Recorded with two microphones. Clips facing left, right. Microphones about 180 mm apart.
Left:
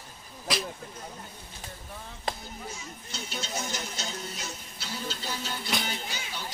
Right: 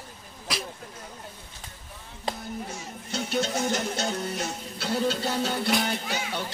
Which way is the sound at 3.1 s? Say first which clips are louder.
Right 11 dB; 65° right (ahead or behind).